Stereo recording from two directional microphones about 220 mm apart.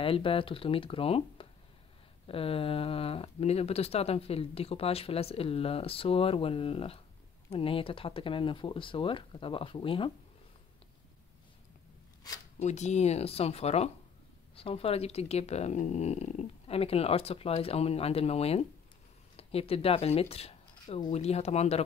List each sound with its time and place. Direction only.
0.0 s speech: 25° left (ahead or behind)
12.5 s speech: 30° left (ahead or behind)